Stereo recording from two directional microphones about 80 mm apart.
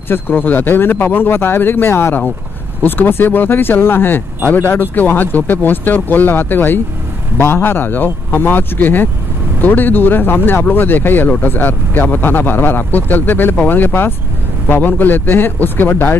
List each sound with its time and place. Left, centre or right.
0.1 s speech: left